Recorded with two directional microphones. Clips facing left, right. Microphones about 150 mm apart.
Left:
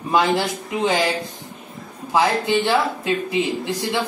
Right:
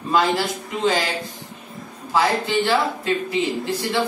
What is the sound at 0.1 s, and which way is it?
Speech, 20° left (ahead or behind).